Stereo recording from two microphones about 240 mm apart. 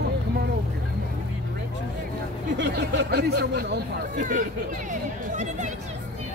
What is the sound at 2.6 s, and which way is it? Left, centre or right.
Speech, right.